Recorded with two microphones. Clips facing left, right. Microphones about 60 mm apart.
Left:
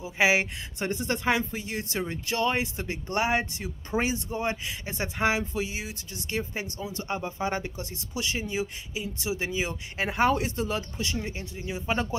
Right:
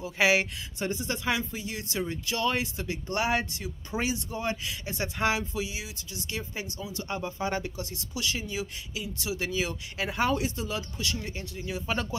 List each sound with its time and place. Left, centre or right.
0.0 s speech: centre
0.7 s speech: left
7.1 s speech: left
10.0 s speech: left